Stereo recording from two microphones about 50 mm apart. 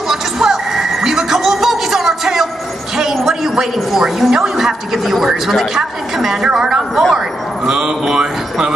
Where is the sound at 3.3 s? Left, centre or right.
Centre.